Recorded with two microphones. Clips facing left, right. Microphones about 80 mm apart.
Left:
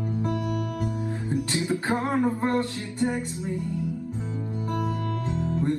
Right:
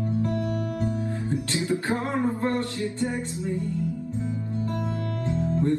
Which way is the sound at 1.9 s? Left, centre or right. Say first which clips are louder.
Left 1 dB; left.